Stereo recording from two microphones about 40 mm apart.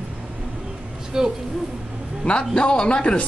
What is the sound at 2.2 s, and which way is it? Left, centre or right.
Speech, left.